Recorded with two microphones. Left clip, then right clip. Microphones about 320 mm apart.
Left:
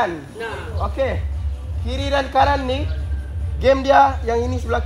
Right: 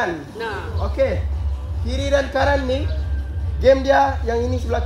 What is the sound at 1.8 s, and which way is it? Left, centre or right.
Speech, left.